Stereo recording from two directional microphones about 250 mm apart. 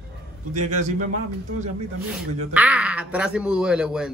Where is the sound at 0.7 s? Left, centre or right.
Right.